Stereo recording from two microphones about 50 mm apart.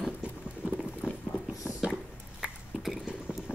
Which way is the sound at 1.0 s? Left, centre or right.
Right.